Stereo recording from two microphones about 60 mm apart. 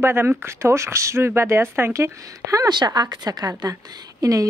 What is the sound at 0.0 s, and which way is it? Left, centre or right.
Speech, right.